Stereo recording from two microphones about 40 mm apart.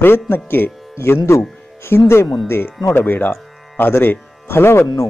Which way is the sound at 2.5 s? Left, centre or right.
Left.